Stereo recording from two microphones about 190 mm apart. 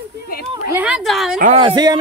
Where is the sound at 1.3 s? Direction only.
45° right (ahead or behind).